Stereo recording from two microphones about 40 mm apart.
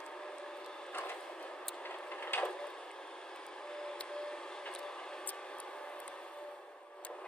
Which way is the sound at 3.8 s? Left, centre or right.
Centre.